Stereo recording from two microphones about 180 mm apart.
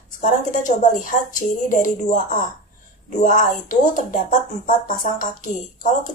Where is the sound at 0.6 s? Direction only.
45° left (ahead or behind).